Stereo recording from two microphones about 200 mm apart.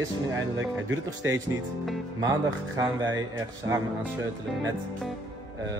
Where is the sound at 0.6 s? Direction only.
75° right (ahead or behind).